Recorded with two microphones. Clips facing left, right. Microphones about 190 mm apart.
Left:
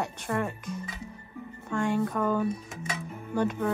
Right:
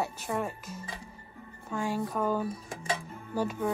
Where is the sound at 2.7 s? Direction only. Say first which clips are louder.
Right 3 dB; 30° right (ahead or behind).